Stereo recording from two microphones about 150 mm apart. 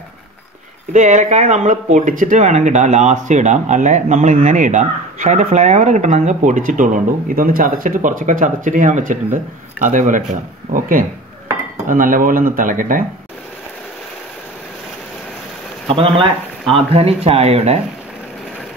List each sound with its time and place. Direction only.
0.9 s speech: 55° right (ahead or behind)
15.9 s speech: 35° right (ahead or behind)